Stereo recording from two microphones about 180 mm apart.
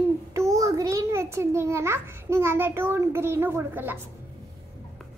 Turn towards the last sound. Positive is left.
turn(degrees=-10)  # may be behind; listen again after turning